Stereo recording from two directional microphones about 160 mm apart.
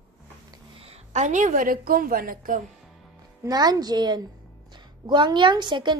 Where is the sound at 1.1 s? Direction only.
50° right (ahead or behind).